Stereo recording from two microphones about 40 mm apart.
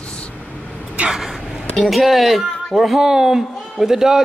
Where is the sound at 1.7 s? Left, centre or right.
Centre.